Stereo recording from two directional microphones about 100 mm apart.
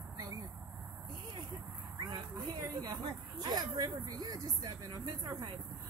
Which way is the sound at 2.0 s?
40° right (ahead or behind).